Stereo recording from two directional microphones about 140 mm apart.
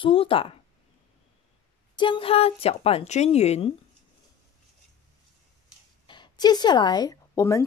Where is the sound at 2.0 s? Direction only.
35° left (ahead or behind).